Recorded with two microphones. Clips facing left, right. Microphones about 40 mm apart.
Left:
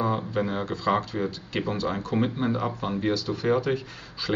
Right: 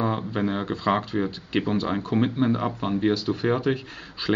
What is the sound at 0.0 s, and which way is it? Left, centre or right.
Speech, centre.